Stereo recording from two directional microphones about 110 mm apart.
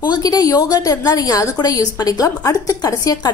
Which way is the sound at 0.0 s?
40° left (ahead or behind).